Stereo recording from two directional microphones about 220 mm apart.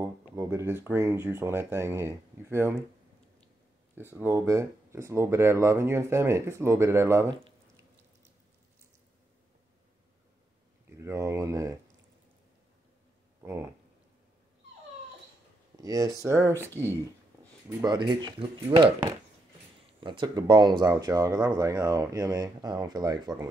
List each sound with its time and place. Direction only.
0.0 s speech: 10° right (ahead or behind)
3.9 s speech: 10° right (ahead or behind)
10.9 s speech: 15° right (ahead or behind)
13.4 s a sound: 10° right (ahead or behind)
15.8 s speech: 15° right (ahead or behind)
20.0 s speech: 20° right (ahead or behind)